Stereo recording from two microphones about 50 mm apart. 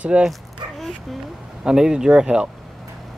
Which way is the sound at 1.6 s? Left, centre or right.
Centre.